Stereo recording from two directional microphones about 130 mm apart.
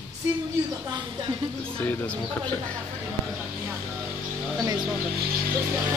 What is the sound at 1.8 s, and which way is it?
Speech, 10° left (ahead or behind).